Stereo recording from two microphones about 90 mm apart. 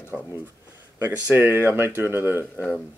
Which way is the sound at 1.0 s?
25° right (ahead or behind).